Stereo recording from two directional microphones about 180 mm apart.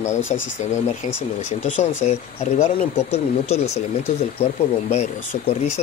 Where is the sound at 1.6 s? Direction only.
40° left (ahead or behind).